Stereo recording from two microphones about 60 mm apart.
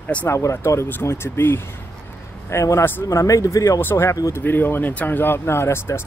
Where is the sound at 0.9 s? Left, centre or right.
Left.